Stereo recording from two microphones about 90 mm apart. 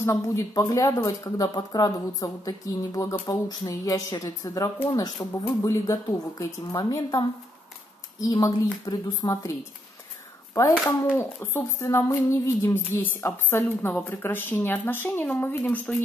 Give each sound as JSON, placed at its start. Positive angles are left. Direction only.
{"t": 0.0, "sound": "speech", "side_deg": 35}
{"t": 11.1, "sound": "speech", "side_deg": 25}